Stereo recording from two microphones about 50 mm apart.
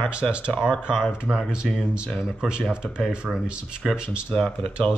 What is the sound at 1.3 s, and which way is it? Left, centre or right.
Speech, right.